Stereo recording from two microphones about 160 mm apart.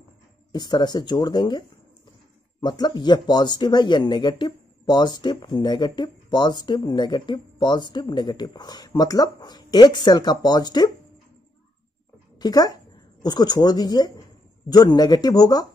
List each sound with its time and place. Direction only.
0.5 s speech: 25° left (ahead or behind)
2.6 s speech: 25° left (ahead or behind)
12.4 s speech: 25° left (ahead or behind)